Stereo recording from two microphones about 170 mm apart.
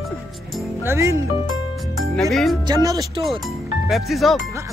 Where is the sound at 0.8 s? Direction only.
15° right (ahead or behind).